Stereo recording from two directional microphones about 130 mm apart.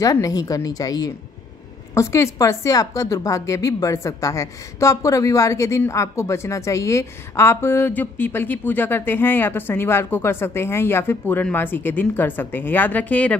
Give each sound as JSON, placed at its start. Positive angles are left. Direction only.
{"t": 0.0, "sound": "a woman's voice", "side_deg": 25}